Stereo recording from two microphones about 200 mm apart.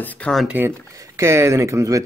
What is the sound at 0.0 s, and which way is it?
Speech, 5° left (ahead or behind).